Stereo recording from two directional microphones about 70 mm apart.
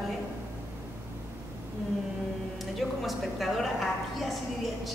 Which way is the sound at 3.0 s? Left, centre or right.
Centre.